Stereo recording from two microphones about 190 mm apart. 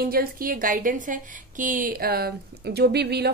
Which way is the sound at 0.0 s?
50° right (ahead or behind).